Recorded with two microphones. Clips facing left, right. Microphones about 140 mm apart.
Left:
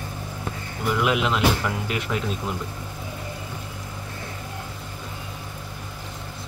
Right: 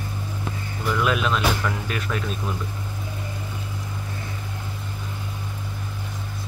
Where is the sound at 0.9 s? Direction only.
20° left (ahead or behind).